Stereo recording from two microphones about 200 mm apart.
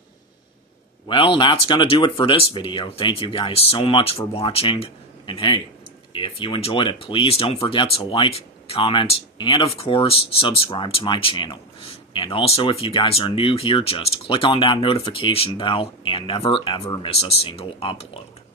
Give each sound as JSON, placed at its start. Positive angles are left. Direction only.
{"t": 1.0, "sound": "speech", "side_deg": 25}